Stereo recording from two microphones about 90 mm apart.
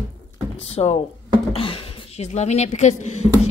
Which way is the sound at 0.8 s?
90° left.